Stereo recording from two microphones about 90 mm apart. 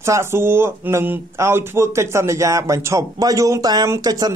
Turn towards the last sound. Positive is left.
turn(degrees=-45)  # may be behind; listen again after turning